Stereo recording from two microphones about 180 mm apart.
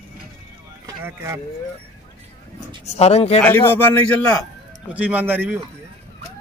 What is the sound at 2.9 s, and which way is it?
Speech, 35° left (ahead or behind).